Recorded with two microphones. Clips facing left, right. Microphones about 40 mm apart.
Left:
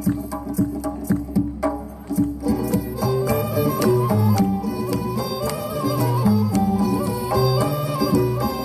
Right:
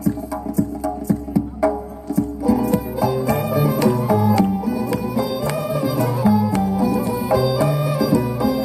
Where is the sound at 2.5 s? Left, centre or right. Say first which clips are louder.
Right 4 dB; right.